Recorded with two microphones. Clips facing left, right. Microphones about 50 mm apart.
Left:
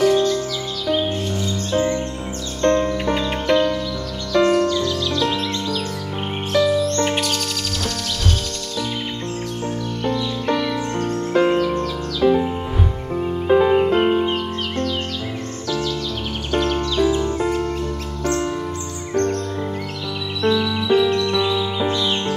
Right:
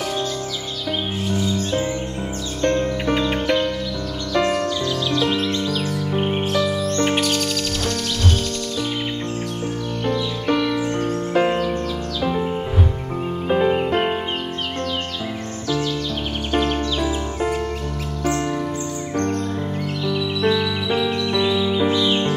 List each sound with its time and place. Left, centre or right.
0.0 s music: centre
10.4 s music: centre
12.2 s music: centre
13.6 s music: centre
14.0 s music: centre
16.5 s music: centre
20.4 s music: centre